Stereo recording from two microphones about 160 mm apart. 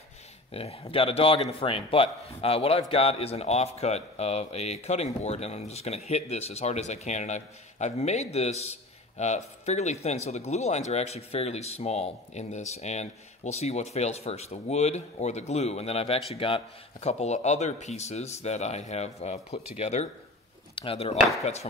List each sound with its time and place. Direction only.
0.5 s a man's voice: 40° left (ahead or behind)